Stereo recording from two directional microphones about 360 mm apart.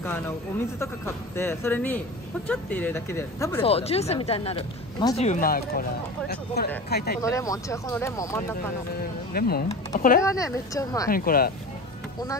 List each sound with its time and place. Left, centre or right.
0.7 s speech: centre; by 7.2 s left
7.2 s speech: centre
9.3 s speech: left
10.2 s speech: centre
11.1 s speech: left